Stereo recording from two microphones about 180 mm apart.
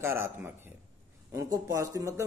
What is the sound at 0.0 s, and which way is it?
Speech, 15° right (ahead or behind).